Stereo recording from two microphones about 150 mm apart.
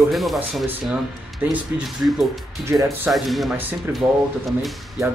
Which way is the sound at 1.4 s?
10° right (ahead or behind).